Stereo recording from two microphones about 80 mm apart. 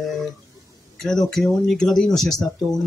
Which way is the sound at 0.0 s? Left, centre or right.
Centre.